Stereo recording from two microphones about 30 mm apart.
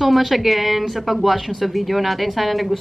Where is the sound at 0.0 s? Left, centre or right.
Centre.